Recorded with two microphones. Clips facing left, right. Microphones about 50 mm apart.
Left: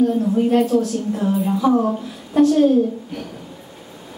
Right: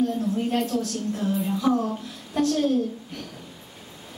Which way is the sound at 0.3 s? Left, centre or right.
Centre.